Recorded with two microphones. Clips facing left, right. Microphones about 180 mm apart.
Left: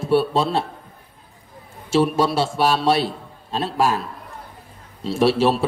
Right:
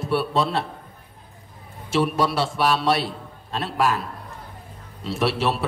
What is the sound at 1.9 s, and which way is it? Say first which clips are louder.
A man's voice: left 3 dB; 25° left (ahead or behind).